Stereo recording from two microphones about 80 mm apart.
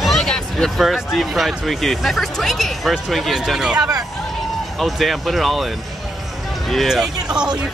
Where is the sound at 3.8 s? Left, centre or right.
Right.